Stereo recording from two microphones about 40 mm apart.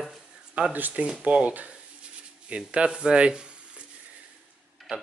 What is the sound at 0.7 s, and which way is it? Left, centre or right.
Speech, right.